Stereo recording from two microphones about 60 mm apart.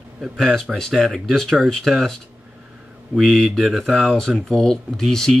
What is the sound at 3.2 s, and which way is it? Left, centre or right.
Speech, centre.